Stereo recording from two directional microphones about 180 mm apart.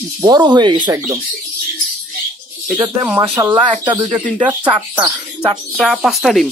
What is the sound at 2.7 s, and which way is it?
Speech, 15° right (ahead or behind).